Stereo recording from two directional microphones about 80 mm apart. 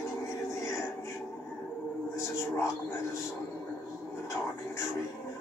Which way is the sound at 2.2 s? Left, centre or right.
Left.